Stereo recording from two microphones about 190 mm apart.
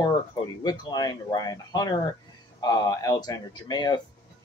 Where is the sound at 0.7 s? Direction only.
20° left (ahead or behind).